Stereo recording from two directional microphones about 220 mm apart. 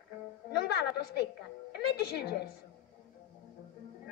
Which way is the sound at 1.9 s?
45° left (ahead or behind).